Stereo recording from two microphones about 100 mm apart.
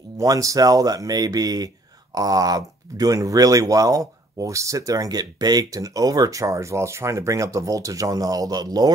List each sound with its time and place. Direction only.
0.2 s speech: 35° right (ahead or behind)